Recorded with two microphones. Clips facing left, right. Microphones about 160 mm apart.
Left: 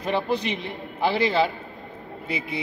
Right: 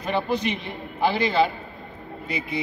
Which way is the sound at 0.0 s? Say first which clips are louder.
Even; 25° left (ahead or behind).